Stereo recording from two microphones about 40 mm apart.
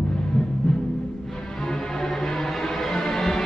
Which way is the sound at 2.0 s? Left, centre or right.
Centre.